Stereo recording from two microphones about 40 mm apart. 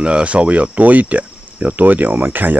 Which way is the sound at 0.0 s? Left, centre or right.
Right.